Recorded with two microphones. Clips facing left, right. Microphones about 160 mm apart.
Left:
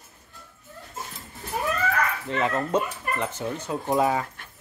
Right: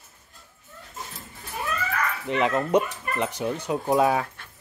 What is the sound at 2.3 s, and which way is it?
Speech, 15° right (ahead or behind).